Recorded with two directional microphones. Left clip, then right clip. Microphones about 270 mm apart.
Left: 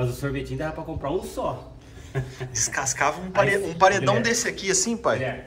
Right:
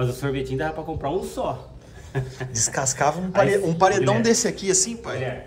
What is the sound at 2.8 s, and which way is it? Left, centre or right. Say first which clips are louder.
A man's voice: right 3 dB; right.